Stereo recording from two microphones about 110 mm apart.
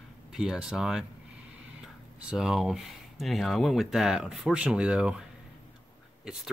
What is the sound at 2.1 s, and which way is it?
Speech, 5° right (ahead or behind).